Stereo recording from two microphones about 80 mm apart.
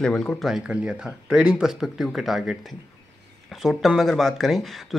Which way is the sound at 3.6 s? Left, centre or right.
Centre.